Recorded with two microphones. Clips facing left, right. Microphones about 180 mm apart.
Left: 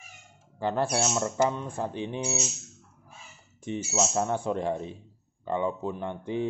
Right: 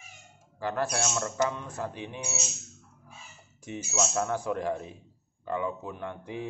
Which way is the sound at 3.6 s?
25° left (ahead or behind).